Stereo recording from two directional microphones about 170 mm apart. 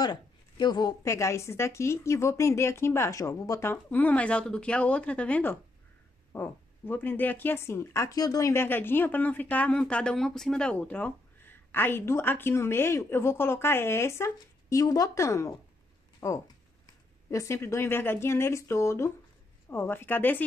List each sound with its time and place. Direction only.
0.0 s speech: 25° left (ahead or behind)